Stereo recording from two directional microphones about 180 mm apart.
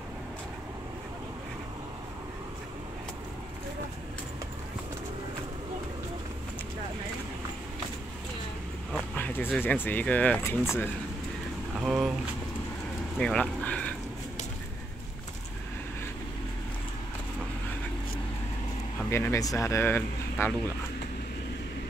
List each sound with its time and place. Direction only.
8.9 s speech: 10° left (ahead or behind)
11.8 s speech: centre (ahead or behind)
13.2 s a sound: 5° left (ahead or behind)
19.0 s speech: 15° left (ahead or behind)